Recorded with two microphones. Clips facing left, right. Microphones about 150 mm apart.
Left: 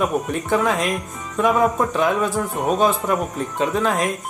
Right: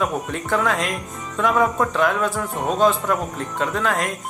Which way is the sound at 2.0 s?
15° left (ahead or behind).